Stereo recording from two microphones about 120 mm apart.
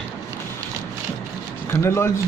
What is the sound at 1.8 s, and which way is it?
Speech, 20° left (ahead or behind).